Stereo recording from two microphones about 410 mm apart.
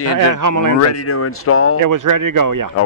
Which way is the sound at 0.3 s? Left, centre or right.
Right.